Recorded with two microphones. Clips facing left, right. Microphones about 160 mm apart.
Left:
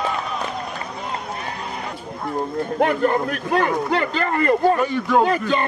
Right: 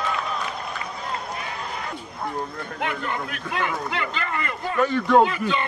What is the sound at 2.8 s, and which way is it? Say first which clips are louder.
Speech: left 10 dB; 40° left (ahead or behind).